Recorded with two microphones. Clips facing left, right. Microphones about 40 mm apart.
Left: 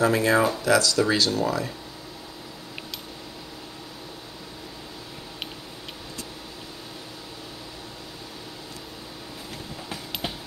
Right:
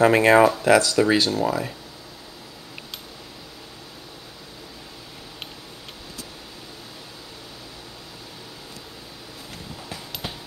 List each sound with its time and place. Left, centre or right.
0.0 s speech: right
0.4 s speech: right; by 1.7 s centre